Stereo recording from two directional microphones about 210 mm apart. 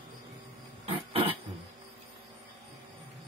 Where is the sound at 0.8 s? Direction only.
25° right (ahead or behind).